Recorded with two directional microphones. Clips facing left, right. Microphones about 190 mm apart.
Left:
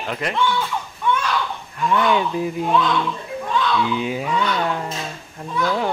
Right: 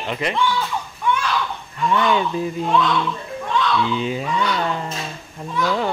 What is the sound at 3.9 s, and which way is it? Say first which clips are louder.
Speech: even; 10° left (ahead or behind).